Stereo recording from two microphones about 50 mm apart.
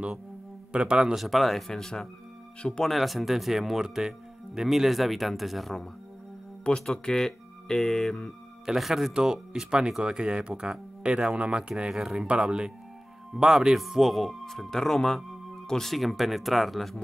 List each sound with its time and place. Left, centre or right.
0.7 s speech: centre
1.1 s speech: centre
1.7 s speech: centre
2.8 s speech: centre
6.9 s speech: centre
8.6 s speech: centre
9.1 s speech: centre
11.9 s speech: centre